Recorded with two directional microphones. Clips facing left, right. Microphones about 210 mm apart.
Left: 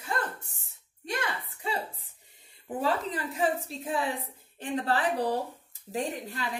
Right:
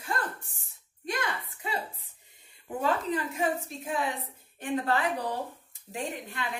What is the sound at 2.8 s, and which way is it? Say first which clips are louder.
A woman's voice: right 1 dB; 35° left (ahead or behind).